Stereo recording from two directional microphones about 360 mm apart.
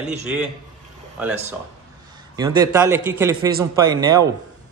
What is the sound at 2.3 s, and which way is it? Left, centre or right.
A man's voice, centre.